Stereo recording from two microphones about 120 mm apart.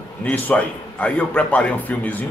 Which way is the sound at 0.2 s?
10° left (ahead or behind).